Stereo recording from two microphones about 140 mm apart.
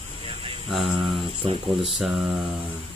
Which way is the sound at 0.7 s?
5° right (ahead or behind).